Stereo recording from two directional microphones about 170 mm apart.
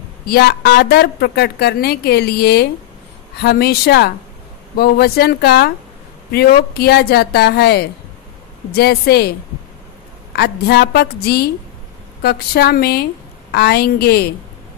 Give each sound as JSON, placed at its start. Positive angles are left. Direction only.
{"t": 0.3, "sound": "a woman's voice", "side_deg": 65}
{"t": 10.3, "sound": "a woman's voice", "side_deg": 75}